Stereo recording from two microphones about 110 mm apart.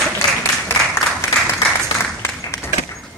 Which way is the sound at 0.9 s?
20° left (ahead or behind).